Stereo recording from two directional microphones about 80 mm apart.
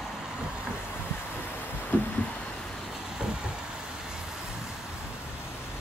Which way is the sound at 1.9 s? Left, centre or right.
Left.